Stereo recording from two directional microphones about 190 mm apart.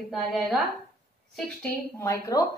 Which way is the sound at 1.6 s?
15° left (ahead or behind).